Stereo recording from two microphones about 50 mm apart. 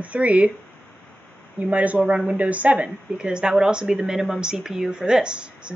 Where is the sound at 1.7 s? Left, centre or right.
Right.